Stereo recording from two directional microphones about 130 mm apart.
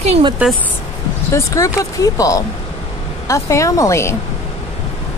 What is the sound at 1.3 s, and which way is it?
Speech, 25° left (ahead or behind).